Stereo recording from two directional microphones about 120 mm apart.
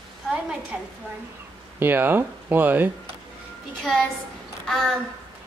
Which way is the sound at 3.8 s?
5° left (ahead or behind).